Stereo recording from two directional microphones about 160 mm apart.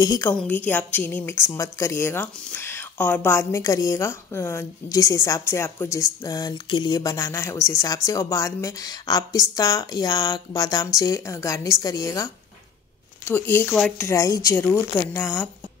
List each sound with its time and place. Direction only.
0.0 s a woman's voice: 25° left (ahead or behind)
0.3 s a woman's voice: 10° left (ahead or behind)
13.3 s speech: 10° left (ahead or behind)
14.0 s speech: 20° left (ahead or behind)